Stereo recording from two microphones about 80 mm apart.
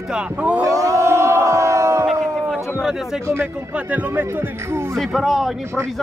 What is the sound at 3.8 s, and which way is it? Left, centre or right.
Speech, right.